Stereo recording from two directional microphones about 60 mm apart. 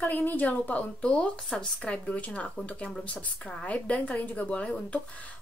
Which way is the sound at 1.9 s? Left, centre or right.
Left.